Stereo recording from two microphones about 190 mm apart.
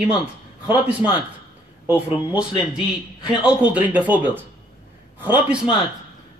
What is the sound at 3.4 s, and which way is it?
Speech, 5° right (ahead or behind).